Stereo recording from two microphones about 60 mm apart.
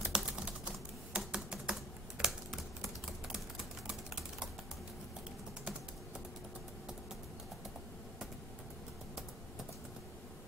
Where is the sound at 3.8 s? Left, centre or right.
Centre.